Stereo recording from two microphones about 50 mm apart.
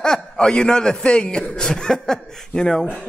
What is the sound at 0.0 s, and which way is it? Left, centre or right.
Speech, centre.